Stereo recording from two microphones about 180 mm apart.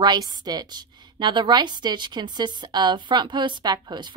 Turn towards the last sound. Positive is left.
turn(degrees=-25)  # may be behind; listen again after turning